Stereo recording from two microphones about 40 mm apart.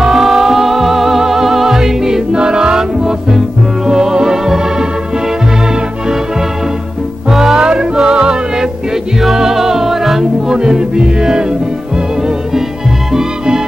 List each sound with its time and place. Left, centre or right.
0.0 s music: centre
7.2 s music: centre
7.5 s music: right
10.5 s music: centre